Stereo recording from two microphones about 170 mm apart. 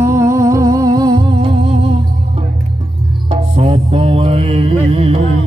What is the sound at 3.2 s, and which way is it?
Music, 35° right (ahead or behind).